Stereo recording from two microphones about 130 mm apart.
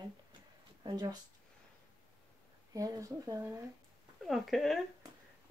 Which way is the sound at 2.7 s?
25° right (ahead or behind).